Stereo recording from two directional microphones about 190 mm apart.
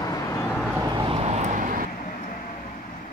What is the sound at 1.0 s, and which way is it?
Vehicle, 35° right (ahead or behind).